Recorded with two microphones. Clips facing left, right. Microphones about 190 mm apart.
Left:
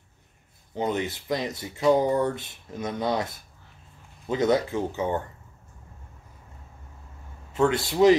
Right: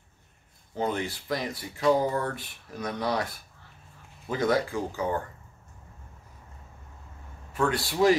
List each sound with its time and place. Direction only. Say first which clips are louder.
0.7 s speech: left 2 dB; 20° left (ahead or behind)
7.5 s speech: left 4 dB; 25° left (ahead or behind)